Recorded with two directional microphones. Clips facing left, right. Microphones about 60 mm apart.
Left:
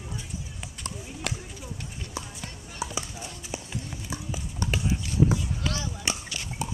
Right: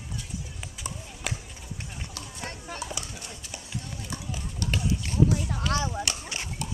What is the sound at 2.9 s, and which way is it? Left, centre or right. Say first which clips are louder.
Clip-clop: left 3 dB; left.